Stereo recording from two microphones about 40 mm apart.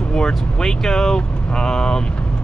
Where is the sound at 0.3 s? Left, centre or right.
Centre.